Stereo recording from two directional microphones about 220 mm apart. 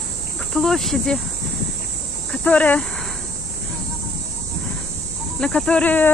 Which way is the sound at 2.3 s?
5° left (ahead or behind).